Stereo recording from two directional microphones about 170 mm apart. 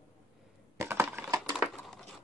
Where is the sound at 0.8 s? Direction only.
15° right (ahead or behind).